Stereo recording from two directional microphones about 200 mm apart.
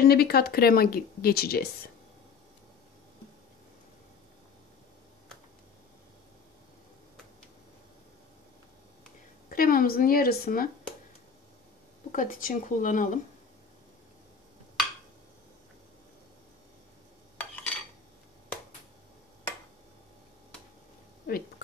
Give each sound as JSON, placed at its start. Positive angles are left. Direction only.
{"t": 0.0, "sound": "speech", "side_deg": 50}
{"t": 9.5, "sound": "speech", "side_deg": 45}
{"t": 12.1, "sound": "speech", "side_deg": 45}
{"t": 21.3, "sound": "a sound", "side_deg": 50}